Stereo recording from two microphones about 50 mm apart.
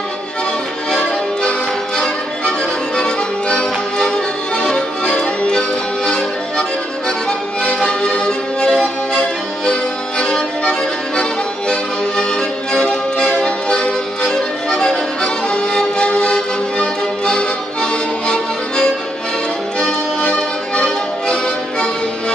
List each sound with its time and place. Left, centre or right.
3.0 s music: centre
4.6 s accordion: centre
7.1 s music: centre